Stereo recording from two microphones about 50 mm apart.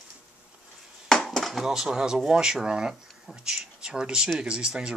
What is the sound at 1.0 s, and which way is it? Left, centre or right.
Chop, centre.